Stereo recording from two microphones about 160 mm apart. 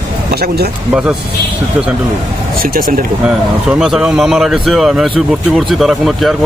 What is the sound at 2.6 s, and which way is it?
Speech, 65° right (ahead or behind).